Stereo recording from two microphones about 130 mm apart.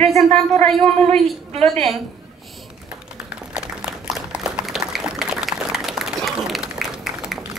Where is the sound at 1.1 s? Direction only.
50° right (ahead or behind).